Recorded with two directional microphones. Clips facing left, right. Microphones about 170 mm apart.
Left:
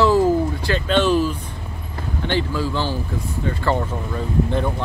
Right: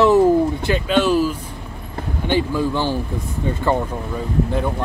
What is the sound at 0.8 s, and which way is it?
Speech, 10° right (ahead or behind).